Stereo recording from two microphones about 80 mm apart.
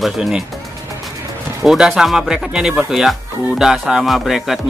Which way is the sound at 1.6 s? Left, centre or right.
Centre.